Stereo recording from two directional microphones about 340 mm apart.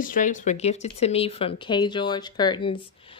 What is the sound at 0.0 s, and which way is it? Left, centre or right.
Speech, left.